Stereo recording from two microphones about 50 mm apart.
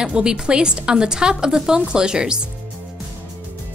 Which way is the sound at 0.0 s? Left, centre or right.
Centre.